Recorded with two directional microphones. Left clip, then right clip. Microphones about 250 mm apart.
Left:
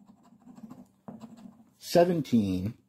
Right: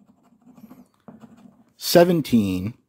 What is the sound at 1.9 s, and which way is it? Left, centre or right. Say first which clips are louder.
Speech: right 8 dB; right.